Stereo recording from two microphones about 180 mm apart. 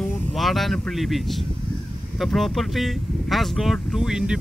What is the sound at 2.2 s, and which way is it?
Speech, centre (ahead or behind).